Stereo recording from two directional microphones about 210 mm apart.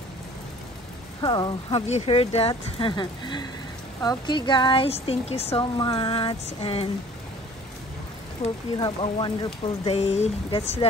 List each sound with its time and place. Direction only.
1.2 s speech: 20° left (ahead or behind)
8.4 s speech: 30° left (ahead or behind)